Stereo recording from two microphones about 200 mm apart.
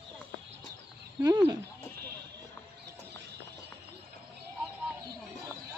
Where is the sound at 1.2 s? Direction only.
20° right (ahead or behind).